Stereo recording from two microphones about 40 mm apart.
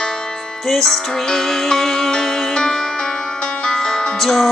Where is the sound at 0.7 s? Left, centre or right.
Centre.